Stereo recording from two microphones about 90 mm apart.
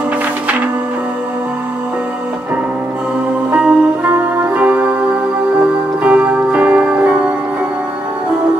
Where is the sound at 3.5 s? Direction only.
15° right (ahead or behind).